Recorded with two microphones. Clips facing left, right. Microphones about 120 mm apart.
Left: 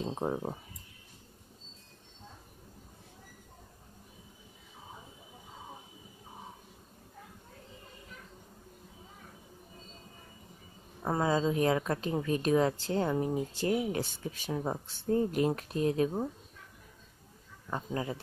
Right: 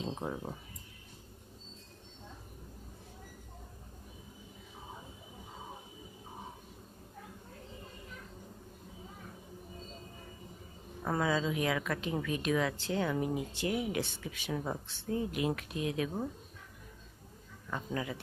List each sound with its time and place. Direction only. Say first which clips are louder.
0.1 s speech: left 5 dB; 30° left (ahead or behind)
11.0 s speech: left 3 dB; 25° left (ahead or behind)
14.5 s speech: left 2 dB; 25° left (ahead or behind)
14.9 s speech: left 6 dB; 45° left (ahead or behind)
17.6 s speech: left 2 dB; 30° left (ahead or behind)